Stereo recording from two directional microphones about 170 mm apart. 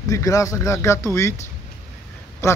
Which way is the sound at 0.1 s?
20° left (ahead or behind).